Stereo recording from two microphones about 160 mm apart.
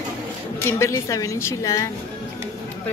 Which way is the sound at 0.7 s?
15° left (ahead or behind).